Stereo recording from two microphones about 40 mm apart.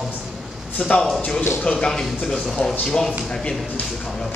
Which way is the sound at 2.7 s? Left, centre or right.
Centre.